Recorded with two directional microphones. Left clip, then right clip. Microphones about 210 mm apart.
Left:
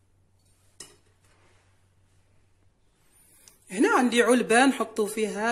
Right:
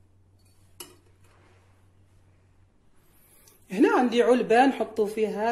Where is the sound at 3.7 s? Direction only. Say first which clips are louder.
Right 1 dB; 10° left (ahead or behind).